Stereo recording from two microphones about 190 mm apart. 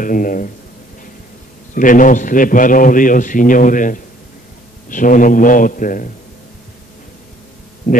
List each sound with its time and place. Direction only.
0.0 s a man's voice: 45° left (ahead or behind)
1.8 s a man's voice: 45° left (ahead or behind)
7.8 s speech: 45° left (ahead or behind)